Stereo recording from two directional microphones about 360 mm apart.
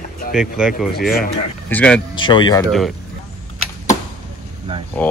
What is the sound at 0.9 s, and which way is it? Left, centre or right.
Speech, left.